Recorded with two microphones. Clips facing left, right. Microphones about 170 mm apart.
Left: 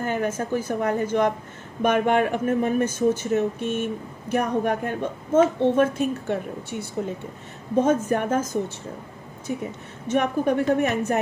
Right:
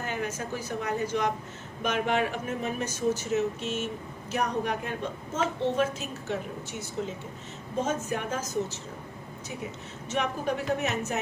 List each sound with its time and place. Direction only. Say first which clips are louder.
0.0 s a woman's voice: left 7 dB; 50° left (ahead or behind)